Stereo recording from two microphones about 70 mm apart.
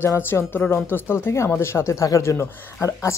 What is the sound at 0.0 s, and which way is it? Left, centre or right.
A woman's voice, left.